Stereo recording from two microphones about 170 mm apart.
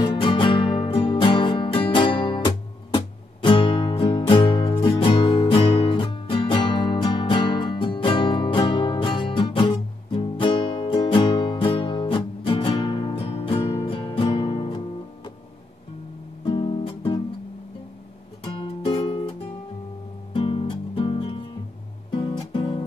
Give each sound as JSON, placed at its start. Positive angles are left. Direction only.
{"t": 0.0, "sound": "music", "side_deg": 25}
{"t": 13.6, "sound": "music", "side_deg": 20}
{"t": 16.4, "sound": "music", "side_deg": 30}
{"t": 18.4, "sound": "music", "side_deg": 30}
{"t": 20.3, "sound": "music", "side_deg": 30}